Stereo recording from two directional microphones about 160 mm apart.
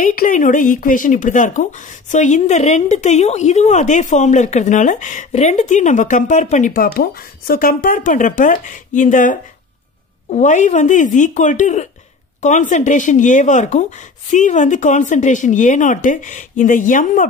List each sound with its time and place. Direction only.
0.0 s speech: 60° left (ahead or behind)